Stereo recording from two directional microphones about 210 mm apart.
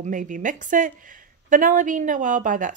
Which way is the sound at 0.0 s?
40° right (ahead or behind).